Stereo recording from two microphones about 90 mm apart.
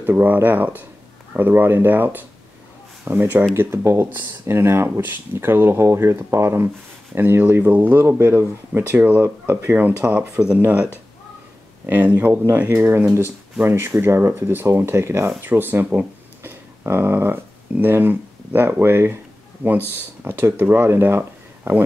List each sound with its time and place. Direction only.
0.0 s speech: 20° right (ahead or behind)
11.8 s speech: 20° right (ahead or behind)
20.2 s speech: 25° right (ahead or behind)
21.2 s a sound: 25° right (ahead or behind)